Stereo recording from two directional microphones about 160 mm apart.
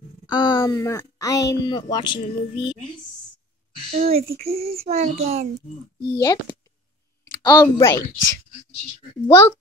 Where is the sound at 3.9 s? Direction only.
40° right (ahead or behind).